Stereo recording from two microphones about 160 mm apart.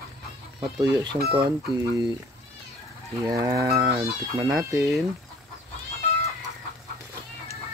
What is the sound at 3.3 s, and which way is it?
Dishes, 20° right (ahead or behind).